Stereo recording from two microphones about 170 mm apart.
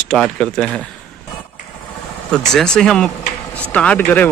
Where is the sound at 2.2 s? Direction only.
5° left (ahead or behind).